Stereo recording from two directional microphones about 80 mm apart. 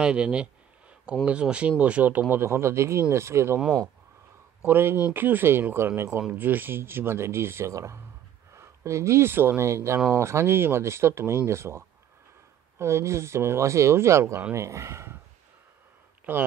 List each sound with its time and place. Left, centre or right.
0.0 s a sound: centre
1.2 s speech: centre; by 3.5 s right
4.6 s speech: right
16.3 s speech: right